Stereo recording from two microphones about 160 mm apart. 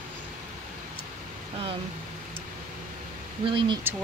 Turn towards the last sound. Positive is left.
turn(degrees=-30)  # may be behind; listen again after turning